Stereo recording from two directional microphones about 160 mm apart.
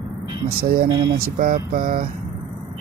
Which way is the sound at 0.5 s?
70° right (ahead or behind).